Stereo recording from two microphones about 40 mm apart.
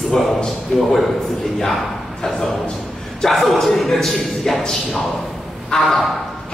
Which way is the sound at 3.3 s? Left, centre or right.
Centre.